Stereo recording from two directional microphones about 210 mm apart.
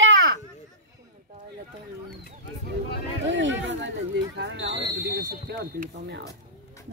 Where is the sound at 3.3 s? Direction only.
60° right (ahead or behind).